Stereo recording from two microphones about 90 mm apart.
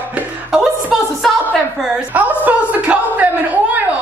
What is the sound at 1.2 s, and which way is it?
Speech, centre (ahead or behind).